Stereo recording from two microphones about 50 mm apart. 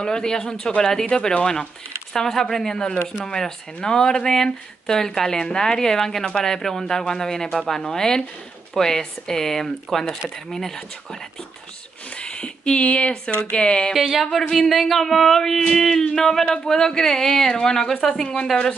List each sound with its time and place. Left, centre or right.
0.0 s speech: centre
12.2 s speech: centre
13.6 s a sound: left
13.9 s speech: centre